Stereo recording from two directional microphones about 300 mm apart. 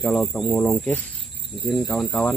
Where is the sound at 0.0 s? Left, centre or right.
Centre.